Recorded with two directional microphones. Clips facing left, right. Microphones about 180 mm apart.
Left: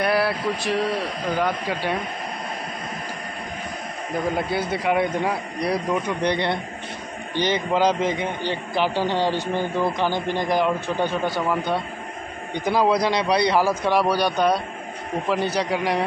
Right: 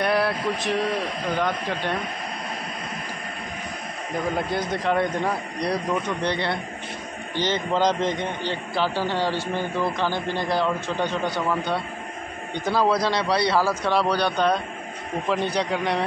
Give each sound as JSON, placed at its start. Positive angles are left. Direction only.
{"t": 0.0, "sound": "a sound", "side_deg": 5}
{"t": 1.3, "sound": "a man's voice", "side_deg": 5}
{"t": 4.5, "sound": "a man's voice", "side_deg": 10}